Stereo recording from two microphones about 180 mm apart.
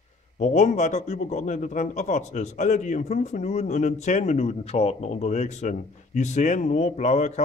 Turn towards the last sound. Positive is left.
turn(degrees=40)  # may be behind; listen again after turning